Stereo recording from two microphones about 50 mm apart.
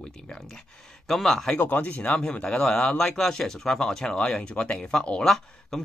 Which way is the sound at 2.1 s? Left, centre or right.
Centre.